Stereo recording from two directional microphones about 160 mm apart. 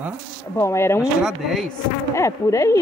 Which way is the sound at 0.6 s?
15° left (ahead or behind).